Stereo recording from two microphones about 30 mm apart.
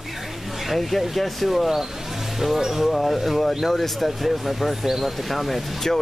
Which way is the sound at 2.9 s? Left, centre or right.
Centre.